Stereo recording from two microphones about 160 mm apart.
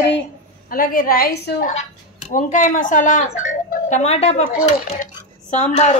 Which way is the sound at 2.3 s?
55° left (ahead or behind).